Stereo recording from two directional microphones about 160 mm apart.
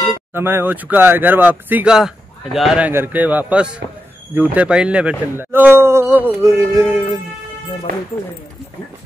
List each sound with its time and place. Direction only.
0.3 s a man's voice: 15° right (ahead or behind)
2.9 s a man's voice: 10° right (ahead or behind)